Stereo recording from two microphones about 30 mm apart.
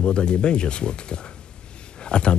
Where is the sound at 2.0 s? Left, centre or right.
Left.